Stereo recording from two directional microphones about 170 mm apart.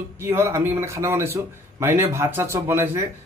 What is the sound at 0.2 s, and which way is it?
A man's voice, 15° right (ahead or behind).